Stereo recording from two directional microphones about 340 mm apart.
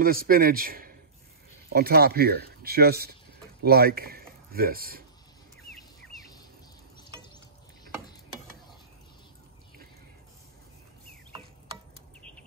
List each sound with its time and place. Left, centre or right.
0.0 s speech: right
12.2 s bird: centre